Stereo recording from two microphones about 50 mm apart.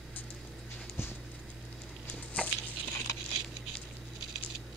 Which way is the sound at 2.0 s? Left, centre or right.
Left.